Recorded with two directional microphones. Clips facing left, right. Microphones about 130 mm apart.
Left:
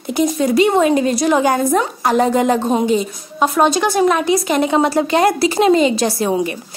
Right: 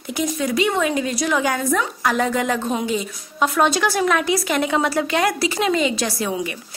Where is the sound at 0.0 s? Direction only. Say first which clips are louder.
Left 7 dB; 30° left (ahead or behind).